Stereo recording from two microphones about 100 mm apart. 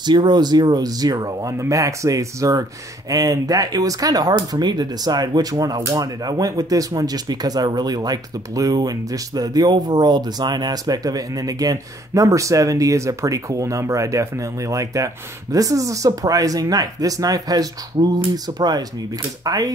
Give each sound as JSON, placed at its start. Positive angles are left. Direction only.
{"t": 0.0, "sound": "speech", "side_deg": -50}